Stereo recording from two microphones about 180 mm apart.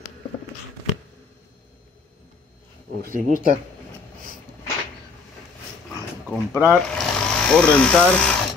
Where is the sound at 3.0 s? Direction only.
50° right (ahead or behind).